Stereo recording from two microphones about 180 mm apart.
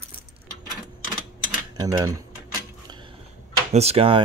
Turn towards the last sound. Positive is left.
turn(degrees=-35)  # may be behind; listen again after turning